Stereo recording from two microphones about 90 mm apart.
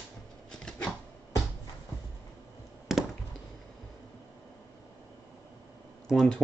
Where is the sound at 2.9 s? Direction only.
Centre (ahead or behind).